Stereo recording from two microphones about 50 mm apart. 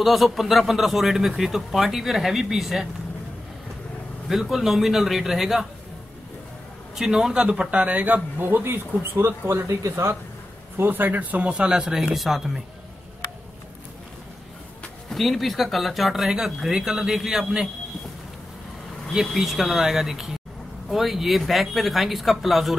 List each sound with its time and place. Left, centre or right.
0.0 s a man's voice: centre
4.3 s a man's voice: centre
7.0 s a man's voice: centre; by 10.1 s right
10.8 s speech: right
11.1 s speech: right; by 12.5 s centre
15.0 s a man's voice: centre
19.3 s a man's voice: centre